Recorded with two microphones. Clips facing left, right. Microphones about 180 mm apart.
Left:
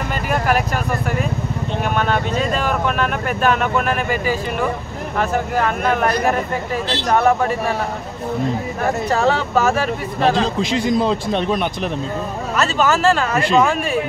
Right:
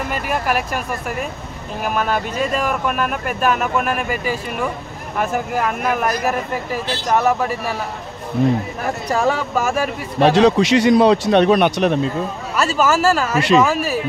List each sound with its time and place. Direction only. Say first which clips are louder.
2.0 s speech: even; 5° right (ahead or behind)
9.2 s speech: left 2 dB; 10° right (ahead or behind)
10.2 s speech: right 5 dB; 75° right (ahead or behind)
12.5 s speech: right 1 dB; 5° right (ahead or behind)